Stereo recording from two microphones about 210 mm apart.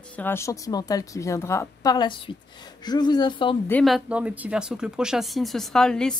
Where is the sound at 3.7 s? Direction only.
Centre (ahead or behind).